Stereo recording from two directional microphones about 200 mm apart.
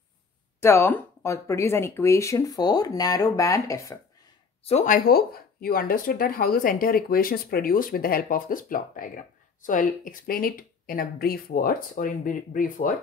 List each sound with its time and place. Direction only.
0.6 s speech: 10° left (ahead or behind)
4.6 s speech: 35° left (ahead or behind)